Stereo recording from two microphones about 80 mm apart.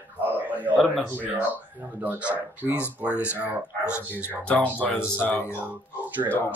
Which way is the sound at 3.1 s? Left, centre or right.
Left.